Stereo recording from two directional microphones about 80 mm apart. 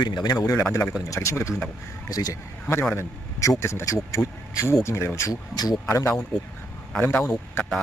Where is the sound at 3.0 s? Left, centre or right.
Left.